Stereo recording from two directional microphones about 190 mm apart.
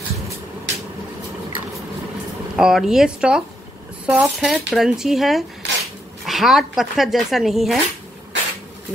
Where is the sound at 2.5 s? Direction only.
Centre (ahead or behind).